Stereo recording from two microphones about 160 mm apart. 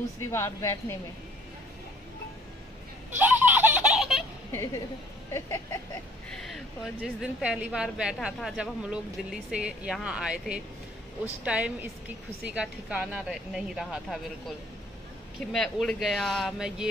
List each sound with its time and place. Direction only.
0.2 s a woman's voice: 15° left (ahead or behind)
3.2 s giggle: 10° right (ahead or behind)
4.5 s a woman's voice: 15° left (ahead or behind)
6.4 s a woman's voice: centre (ahead or behind)
15.5 s a woman's voice: 5° left (ahead or behind)